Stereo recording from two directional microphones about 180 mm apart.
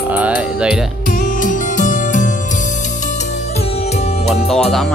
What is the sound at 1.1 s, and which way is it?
Music, 45° left (ahead or behind).